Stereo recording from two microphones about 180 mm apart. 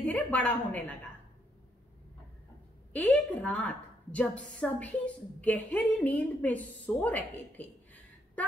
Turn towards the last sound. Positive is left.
turn(degrees=10)  # may be behind; listen again after turning